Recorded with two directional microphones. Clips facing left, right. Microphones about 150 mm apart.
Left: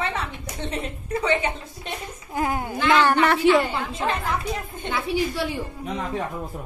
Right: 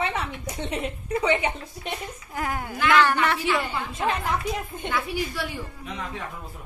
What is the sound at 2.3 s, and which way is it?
Speech, 25° left (ahead or behind).